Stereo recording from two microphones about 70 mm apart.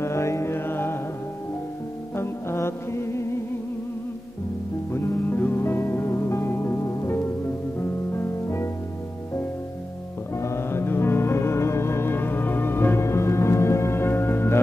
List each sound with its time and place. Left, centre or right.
0.0 s music: left
2.1 s music: left
4.9 s music: left
10.3 s music: left